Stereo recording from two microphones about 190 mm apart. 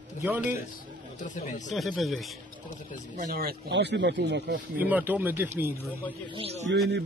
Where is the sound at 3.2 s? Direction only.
55° right (ahead or behind).